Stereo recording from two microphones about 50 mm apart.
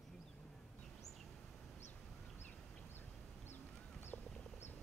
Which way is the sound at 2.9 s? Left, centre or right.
Left.